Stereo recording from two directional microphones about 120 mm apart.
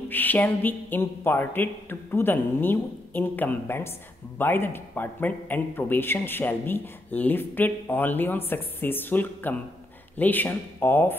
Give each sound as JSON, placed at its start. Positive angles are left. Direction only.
{"t": 0.1, "sound": "a man's voice", "side_deg": 15}